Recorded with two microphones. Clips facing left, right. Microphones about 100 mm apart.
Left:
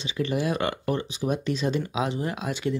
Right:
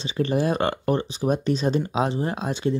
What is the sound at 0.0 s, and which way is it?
Speech, 35° right (ahead or behind).